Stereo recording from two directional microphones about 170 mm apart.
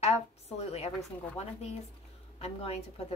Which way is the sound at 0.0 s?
40° left (ahead or behind).